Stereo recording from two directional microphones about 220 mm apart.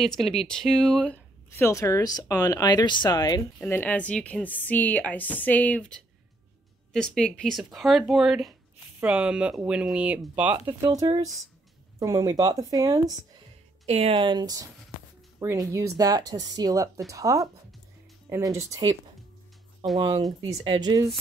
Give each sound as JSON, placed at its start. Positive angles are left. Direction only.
{"t": 0.2, "sound": "speech", "side_deg": 0}
{"t": 13.8, "sound": "speech", "side_deg": -25}
{"t": 15.3, "sound": "music", "side_deg": -15}
{"t": 15.7, "sound": "speech", "side_deg": -15}
{"t": 20.0, "sound": "speech", "side_deg": -15}